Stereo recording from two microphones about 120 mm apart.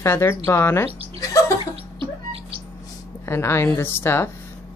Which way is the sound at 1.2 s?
30° left (ahead or behind).